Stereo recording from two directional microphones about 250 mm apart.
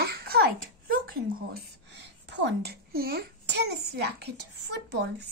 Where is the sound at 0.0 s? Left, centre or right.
Right.